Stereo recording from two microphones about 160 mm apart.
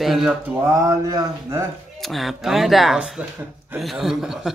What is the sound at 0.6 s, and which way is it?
Speech, 20° right (ahead or behind).